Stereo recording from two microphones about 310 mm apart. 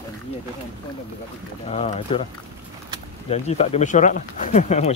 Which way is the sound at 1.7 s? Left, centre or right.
Centre.